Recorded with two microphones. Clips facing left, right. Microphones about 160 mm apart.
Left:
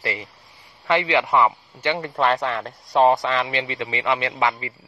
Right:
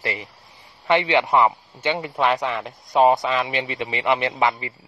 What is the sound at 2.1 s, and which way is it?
Speech, 5° right (ahead or behind).